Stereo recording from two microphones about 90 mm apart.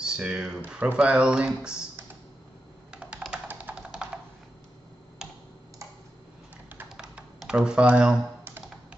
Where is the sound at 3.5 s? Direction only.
15° right (ahead or behind).